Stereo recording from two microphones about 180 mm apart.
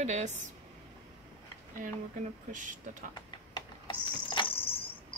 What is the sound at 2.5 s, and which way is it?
Speech, 45° right (ahead or behind).